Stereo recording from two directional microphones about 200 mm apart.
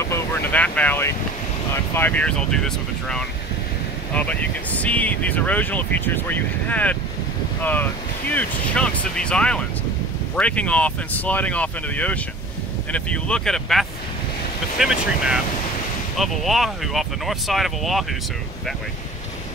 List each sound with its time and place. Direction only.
0.0 s vehicle: 15° left (ahead or behind)
1.7 s speech: 10° left (ahead or behind)